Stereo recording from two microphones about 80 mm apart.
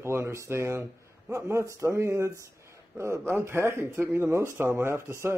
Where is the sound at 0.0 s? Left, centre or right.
Right.